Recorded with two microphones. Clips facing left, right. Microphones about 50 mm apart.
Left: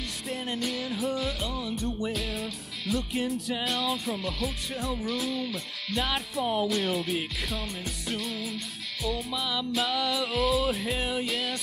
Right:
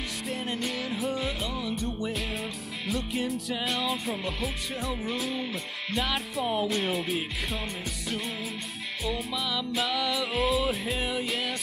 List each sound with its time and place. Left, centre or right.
0.3 s music: centre
4.9 s music: centre
5.3 s speech: right
5.9 s music: centre
9.3 s music: centre